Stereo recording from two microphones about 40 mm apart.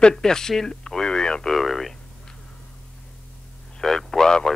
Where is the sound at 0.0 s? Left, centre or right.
Centre.